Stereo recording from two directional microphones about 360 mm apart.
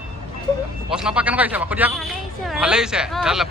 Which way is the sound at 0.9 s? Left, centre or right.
Centre.